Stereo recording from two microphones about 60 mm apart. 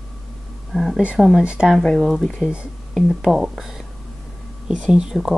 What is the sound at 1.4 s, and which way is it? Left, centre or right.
Speech, centre.